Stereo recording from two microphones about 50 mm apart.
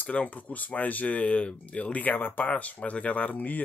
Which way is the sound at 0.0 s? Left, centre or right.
Left.